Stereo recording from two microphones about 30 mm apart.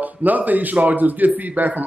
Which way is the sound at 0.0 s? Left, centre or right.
Right.